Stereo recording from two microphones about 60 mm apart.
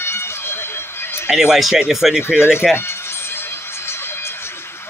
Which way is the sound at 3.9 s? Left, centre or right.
Left.